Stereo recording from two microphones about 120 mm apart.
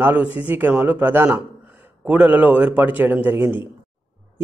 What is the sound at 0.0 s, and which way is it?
A man's voice, 15° right (ahead or behind).